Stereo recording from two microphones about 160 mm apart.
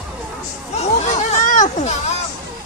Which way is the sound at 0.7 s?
45° left (ahead or behind).